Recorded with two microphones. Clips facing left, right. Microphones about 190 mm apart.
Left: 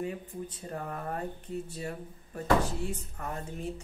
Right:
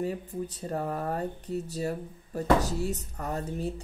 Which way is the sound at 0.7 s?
35° right (ahead or behind).